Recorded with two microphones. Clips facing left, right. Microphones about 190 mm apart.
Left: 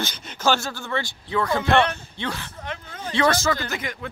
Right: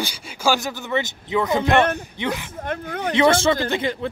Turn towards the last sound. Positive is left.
turn(degrees=-30)  # may be behind; listen again after turning